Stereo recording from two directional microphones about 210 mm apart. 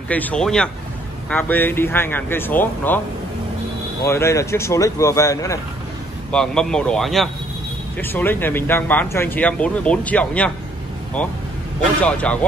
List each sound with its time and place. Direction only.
0.1 s a man's voice: 5° left (ahead or behind)
4.0 s speech: 15° left (ahead or behind)
6.3 s a man's voice: 5° left (ahead or behind)